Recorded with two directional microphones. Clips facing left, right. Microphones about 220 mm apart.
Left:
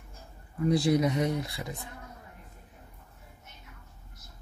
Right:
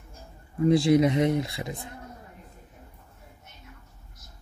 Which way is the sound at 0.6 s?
25° right (ahead or behind).